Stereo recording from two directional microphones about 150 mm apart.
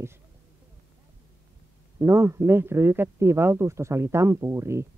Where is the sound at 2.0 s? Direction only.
20° right (ahead or behind).